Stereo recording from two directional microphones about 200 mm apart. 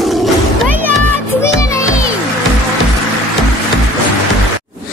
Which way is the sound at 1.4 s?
15° left (ahead or behind).